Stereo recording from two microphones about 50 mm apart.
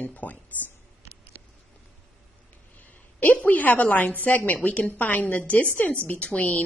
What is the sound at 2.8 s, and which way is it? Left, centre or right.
A woman's voice, left.